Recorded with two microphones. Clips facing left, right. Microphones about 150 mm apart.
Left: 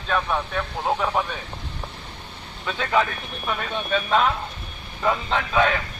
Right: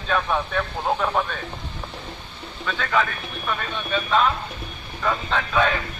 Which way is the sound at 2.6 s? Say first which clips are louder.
Left 1 dB; 20° left (ahead or behind).